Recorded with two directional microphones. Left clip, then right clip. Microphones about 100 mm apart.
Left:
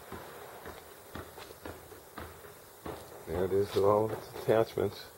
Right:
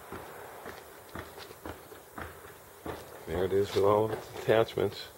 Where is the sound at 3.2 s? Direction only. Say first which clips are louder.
Right 1 dB; 5° right (ahead or behind).